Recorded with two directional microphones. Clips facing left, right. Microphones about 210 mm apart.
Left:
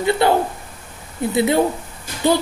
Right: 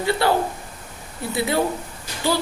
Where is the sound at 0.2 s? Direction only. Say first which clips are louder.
Left 4 dB; 20° left (ahead or behind).